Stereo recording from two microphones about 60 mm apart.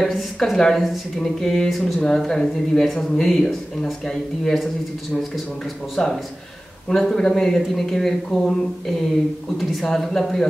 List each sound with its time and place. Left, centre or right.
0.0 s speech: centre
6.0 s speech: centre